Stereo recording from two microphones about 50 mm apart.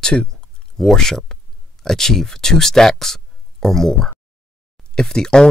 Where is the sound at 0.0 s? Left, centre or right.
Centre.